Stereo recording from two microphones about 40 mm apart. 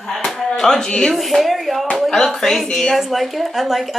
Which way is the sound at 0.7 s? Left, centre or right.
Centre.